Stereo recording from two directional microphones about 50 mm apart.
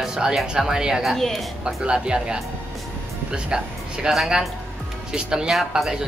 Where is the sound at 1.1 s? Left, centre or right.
Centre.